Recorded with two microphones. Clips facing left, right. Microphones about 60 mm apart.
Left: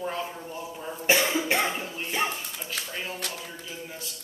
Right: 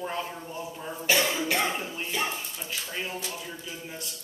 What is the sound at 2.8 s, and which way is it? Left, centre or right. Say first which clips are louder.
Speech: left 4 dB; left.